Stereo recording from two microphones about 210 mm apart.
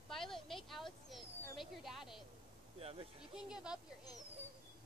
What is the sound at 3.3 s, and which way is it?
Speech, 5° right (ahead or behind).